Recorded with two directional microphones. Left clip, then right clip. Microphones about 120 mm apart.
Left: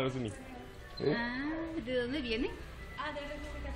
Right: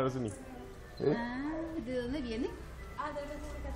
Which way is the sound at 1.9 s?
90° right.